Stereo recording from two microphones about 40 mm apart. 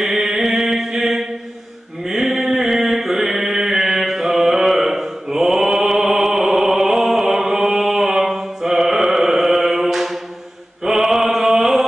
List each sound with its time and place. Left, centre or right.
0.0 s mantra: centre
10.9 s chant: centre